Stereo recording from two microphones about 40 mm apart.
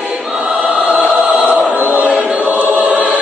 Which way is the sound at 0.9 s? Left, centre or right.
Centre.